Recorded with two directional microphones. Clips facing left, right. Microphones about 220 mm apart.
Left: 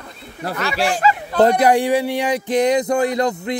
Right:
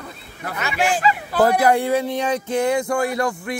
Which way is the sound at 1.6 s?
15° left (ahead or behind).